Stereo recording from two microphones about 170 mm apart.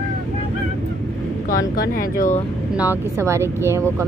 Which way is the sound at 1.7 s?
55° left (ahead or behind).